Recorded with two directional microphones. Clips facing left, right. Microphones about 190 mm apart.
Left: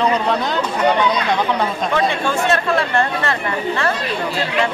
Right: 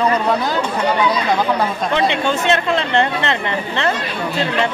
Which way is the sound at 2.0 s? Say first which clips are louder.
Right 1 dB; 20° right (ahead or behind).